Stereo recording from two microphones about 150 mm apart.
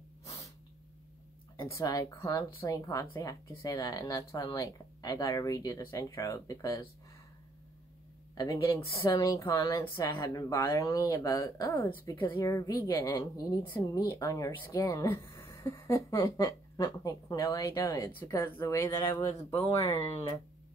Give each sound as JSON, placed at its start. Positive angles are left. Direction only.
{"t": 0.2, "sound": "snort", "side_deg": 20}
{"t": 1.6, "sound": "speech", "side_deg": 20}
{"t": 8.4, "sound": "speech", "side_deg": 20}
{"t": 9.4, "sound": "speech", "side_deg": 15}